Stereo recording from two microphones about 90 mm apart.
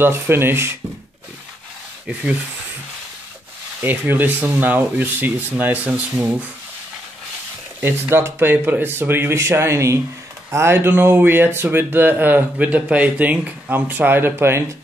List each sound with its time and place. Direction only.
0.0 s speech: 25° right (ahead or behind)
3.8 s speech: 25° right (ahead or behind)
7.8 s speech: 25° right (ahead or behind)